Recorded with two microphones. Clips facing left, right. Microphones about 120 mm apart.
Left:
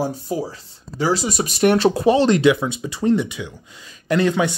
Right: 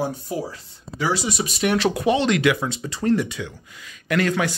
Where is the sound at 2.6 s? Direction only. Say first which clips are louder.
Left 3 dB; 15° left (ahead or behind).